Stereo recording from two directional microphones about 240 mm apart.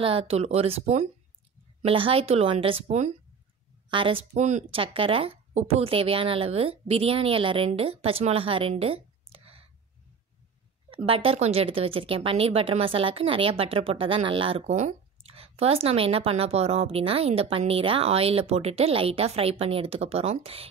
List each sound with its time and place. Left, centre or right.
0.0 s speech: right
10.9 s speech: right